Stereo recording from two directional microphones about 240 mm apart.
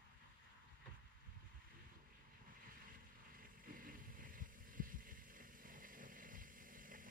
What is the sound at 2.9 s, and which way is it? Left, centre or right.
Boat, right.